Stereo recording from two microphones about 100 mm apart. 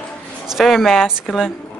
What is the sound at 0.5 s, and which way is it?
Speech, centre (ahead or behind).